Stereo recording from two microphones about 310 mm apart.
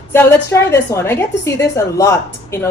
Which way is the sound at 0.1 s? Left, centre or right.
Centre.